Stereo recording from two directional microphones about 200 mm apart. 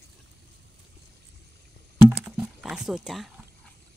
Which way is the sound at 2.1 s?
5° right (ahead or behind).